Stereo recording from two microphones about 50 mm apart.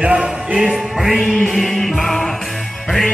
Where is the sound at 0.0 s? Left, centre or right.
Right.